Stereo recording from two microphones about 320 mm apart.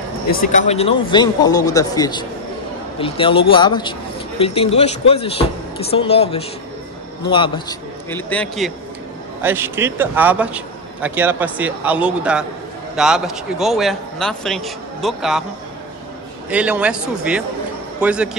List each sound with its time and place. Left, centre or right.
0.3 s a man's voice: left; by 15.4 s centre
16.4 s a man's voice: centre